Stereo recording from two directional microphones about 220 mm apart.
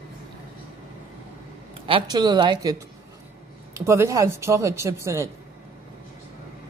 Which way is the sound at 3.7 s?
15° right (ahead or behind).